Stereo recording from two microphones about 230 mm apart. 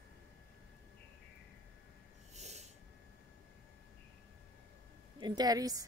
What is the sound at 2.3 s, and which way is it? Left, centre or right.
Snort, right.